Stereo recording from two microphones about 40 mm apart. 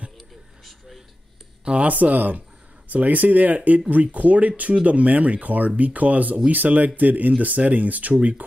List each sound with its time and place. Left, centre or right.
0.7 s a sound: centre
1.6 s speech: right
1.9 s speech: right